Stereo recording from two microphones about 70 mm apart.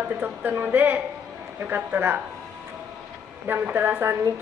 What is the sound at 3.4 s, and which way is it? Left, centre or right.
Speech, right.